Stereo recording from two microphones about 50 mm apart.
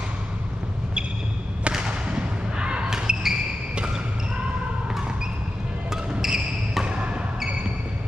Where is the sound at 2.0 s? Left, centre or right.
Right.